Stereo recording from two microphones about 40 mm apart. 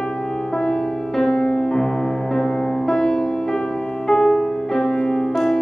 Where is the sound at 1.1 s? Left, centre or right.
Centre.